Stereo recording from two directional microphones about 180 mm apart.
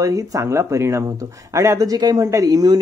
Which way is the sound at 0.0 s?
20° right (ahead or behind).